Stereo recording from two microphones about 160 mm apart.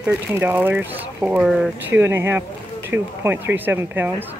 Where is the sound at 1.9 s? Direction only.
15° right (ahead or behind).